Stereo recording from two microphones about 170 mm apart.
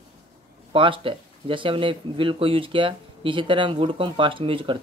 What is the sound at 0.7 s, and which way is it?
Speech, 30° right (ahead or behind).